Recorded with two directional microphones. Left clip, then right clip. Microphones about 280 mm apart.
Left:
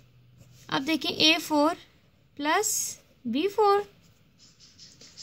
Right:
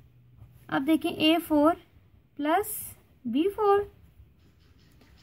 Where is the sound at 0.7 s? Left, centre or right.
Left.